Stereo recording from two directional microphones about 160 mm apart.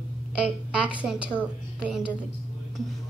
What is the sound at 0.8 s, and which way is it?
A woman's voice, 10° right (ahead or behind).